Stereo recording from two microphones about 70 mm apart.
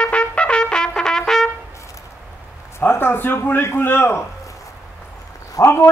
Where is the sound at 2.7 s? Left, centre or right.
Left.